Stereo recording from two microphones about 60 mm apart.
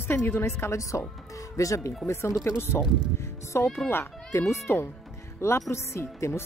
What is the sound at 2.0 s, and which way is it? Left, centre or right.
Speech, left.